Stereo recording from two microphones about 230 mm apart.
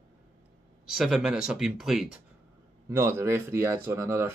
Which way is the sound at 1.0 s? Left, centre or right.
Centre.